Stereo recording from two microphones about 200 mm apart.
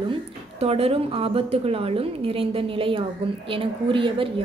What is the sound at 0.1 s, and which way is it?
Speech, 30° right (ahead or behind).